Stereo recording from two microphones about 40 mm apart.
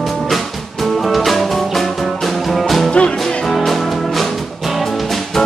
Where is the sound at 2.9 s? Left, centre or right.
Left.